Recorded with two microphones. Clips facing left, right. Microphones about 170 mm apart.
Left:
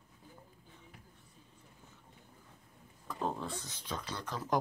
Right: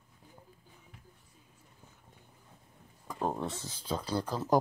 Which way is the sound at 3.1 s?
10° right (ahead or behind).